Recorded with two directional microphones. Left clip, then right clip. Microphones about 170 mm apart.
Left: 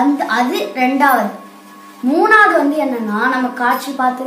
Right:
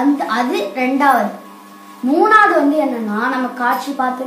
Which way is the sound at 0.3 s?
15° left (ahead or behind).